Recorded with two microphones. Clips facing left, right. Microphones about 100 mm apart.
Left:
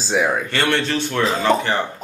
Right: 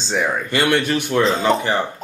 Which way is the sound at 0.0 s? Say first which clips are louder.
Left 2 dB; 5° left (ahead or behind).